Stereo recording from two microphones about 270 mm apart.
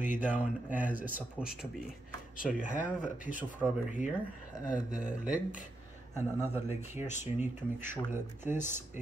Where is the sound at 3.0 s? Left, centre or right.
Left.